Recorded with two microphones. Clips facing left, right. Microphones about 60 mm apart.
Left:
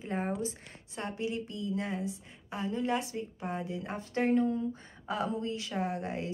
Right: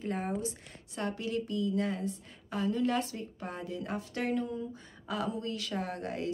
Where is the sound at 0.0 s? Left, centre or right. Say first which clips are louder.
Even; left.